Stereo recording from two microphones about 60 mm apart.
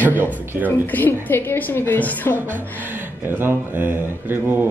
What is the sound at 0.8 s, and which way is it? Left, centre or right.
A woman's voice, left.